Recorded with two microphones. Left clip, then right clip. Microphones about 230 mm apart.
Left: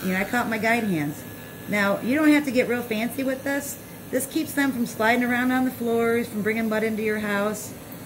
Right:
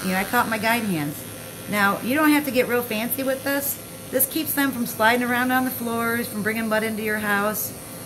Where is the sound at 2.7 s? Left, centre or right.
Right.